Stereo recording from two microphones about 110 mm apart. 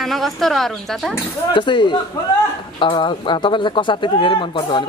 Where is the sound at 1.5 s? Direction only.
45° left (ahead or behind).